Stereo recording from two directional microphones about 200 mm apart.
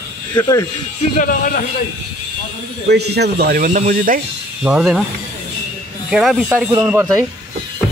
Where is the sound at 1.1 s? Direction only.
45° left (ahead or behind).